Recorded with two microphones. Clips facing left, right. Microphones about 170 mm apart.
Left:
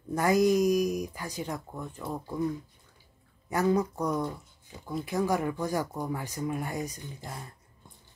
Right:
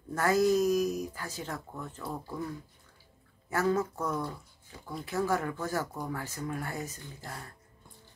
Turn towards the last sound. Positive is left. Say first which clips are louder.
# left 2 dB
turn(degrees=15)  # may be behind; listen again after turning